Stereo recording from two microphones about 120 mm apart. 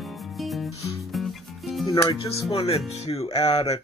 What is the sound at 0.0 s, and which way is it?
Music, centre (ahead or behind).